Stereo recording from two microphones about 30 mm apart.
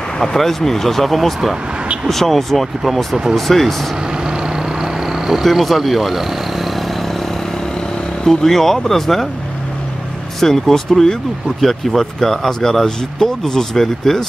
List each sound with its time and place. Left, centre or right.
0.2 s speech: centre
4.2 s vehicle: right
5.4 s vehicle: centre
8.2 s speech: centre
10.4 s speech: centre